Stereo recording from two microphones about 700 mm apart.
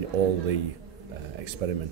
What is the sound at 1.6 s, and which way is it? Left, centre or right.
Speech, right.